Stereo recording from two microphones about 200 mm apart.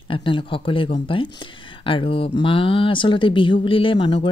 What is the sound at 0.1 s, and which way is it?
Speech, 25° left (ahead or behind).